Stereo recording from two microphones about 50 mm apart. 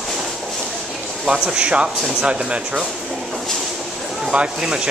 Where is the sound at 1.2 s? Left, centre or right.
Centre.